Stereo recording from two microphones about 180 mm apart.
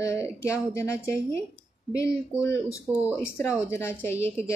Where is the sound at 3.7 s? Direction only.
15° left (ahead or behind).